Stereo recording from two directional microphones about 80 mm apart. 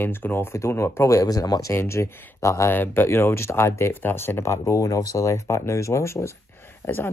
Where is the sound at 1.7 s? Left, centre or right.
Left.